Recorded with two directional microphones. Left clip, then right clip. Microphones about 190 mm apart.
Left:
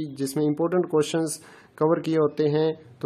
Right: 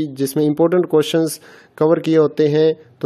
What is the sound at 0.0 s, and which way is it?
Speech, 30° right (ahead or behind).